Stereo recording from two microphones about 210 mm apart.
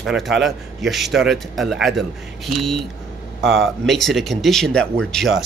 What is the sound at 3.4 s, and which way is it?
Speech, 65° right (ahead or behind).